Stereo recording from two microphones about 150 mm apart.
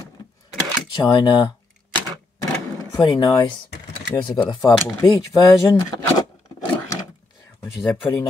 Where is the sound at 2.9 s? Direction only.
25° left (ahead or behind).